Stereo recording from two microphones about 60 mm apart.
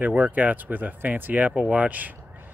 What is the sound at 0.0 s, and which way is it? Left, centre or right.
Speech, right.